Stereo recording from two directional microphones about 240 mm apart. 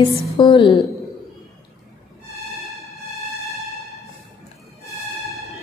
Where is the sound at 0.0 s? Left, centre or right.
Centre.